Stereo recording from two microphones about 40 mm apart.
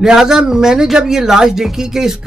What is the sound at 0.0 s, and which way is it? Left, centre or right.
Speech, centre.